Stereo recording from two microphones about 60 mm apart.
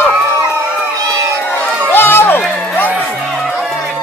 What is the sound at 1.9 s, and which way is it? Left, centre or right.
Crowd, left.